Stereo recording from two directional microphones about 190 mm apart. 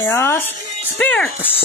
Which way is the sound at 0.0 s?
10° left (ahead or behind).